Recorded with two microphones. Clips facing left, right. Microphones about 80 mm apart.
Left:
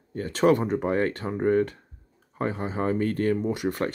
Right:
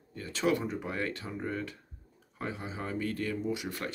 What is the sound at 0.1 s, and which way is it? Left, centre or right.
Speech, left.